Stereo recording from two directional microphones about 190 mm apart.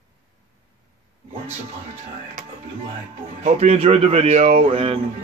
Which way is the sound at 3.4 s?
35° right (ahead or behind).